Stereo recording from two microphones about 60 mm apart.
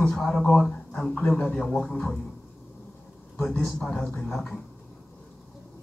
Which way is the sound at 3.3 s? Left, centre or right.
Left.